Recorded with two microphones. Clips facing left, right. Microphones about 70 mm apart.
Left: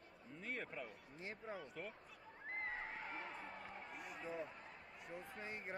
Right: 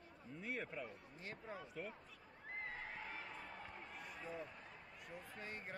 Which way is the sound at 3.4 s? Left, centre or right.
Centre.